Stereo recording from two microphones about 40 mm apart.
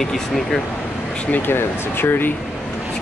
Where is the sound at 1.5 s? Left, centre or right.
Left.